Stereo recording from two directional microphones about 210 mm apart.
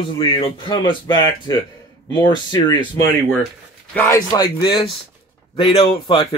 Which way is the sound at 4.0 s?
15° left (ahead or behind).